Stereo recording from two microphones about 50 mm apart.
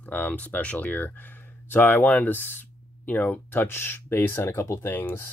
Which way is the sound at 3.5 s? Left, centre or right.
Left.